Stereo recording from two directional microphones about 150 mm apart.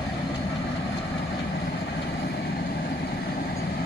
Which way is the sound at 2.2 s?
90° left.